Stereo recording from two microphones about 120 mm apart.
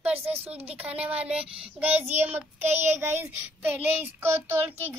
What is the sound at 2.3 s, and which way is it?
Child singing, 65° right (ahead or behind).